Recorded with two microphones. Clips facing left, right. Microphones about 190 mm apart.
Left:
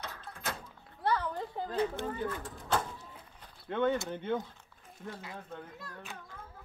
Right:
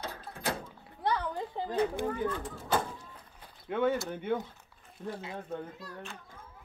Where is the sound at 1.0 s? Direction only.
15° right (ahead or behind).